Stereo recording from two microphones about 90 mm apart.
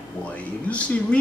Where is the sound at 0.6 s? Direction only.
15° left (ahead or behind).